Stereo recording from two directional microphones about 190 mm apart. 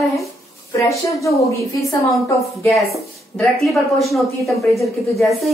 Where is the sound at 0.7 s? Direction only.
15° left (ahead or behind).